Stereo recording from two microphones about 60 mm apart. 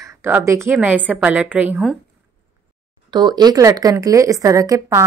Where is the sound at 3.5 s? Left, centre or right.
Right.